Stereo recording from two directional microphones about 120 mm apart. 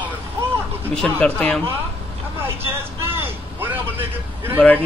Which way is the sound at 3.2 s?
15° right (ahead or behind).